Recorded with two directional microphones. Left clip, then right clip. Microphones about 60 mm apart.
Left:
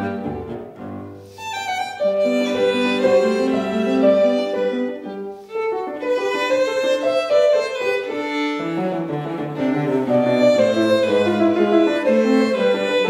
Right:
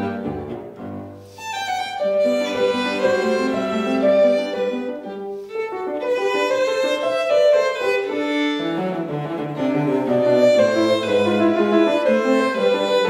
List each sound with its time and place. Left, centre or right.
1.7 s violin: right
3.2 s music: right
3.5 s music: left
4.0 s music: right
5.6 s violin: right
8.7 s music: centre
10.4 s violin: right
11.5 s violin: left
11.8 s violin: right
12.2 s music: right